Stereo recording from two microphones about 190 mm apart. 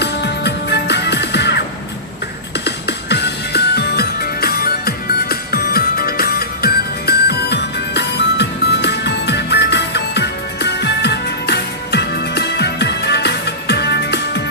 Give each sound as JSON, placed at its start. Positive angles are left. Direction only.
{"t": 0.0, "sound": "music", "side_deg": 60}
{"t": 2.6, "sound": "music", "side_deg": 60}